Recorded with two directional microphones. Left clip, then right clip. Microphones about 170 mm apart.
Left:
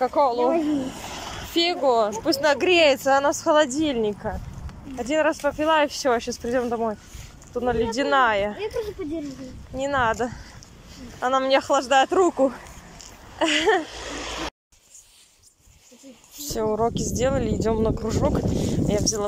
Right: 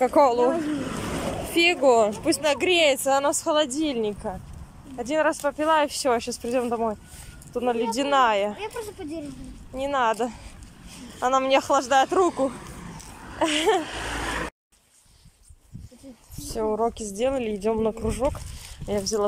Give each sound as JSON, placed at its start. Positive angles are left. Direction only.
{"t": 0.0, "sound": "speech", "side_deg": -20}
{"t": 0.8, "sound": "a sound", "side_deg": -90}
{"t": 1.5, "sound": "speech", "side_deg": -10}
{"t": 13.8, "sound": "a sound", "side_deg": -90}
{"t": 16.3, "sound": "speech", "side_deg": 0}
{"t": 18.9, "sound": "speech", "side_deg": -5}